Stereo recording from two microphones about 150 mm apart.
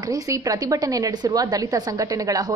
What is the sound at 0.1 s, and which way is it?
A woman's voice, 25° right (ahead or behind).